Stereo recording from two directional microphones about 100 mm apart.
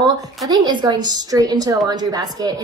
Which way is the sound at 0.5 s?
45° right (ahead or behind).